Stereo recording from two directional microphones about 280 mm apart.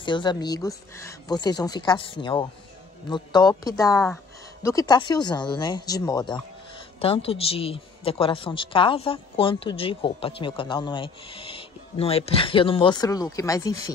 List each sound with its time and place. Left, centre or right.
0.0 s speech: centre